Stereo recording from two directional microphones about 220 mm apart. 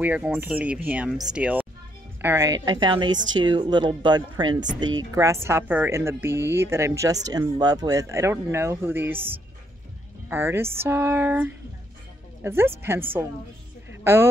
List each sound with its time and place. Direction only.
0.0 s a woman's voice: 5° right (ahead or behind)
10.3 s a woman's voice: 10° right (ahead or behind)